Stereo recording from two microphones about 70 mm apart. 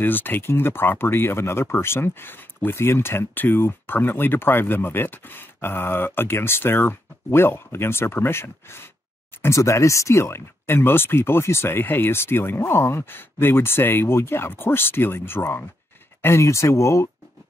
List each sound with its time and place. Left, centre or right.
0.0 s speech: left
9.6 s speech: left